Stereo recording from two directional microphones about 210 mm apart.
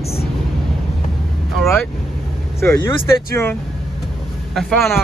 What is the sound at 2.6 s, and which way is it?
Speech, 10° left (ahead or behind).